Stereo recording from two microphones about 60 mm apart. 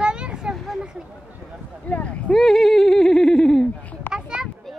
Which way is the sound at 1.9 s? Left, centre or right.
Left.